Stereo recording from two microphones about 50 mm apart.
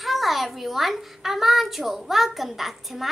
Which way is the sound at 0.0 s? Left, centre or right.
Centre.